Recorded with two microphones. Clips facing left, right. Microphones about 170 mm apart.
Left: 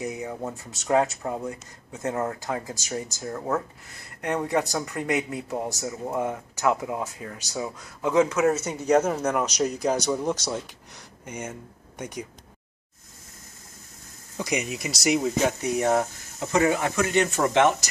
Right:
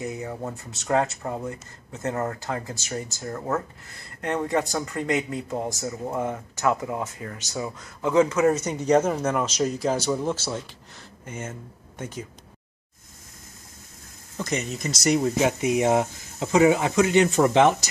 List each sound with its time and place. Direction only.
0.0 s speech: 20° left (ahead or behind)
0.3 s speech: centre (ahead or behind)
2.4 s speech: 15° left (ahead or behind)
3.3 s speech: centre (ahead or behind)
14.3 s speech: 10° left (ahead or behind)
15.6 s speech: 15° right (ahead or behind)